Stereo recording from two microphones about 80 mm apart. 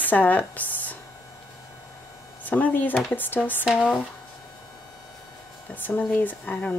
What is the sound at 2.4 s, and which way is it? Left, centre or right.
Speech, left.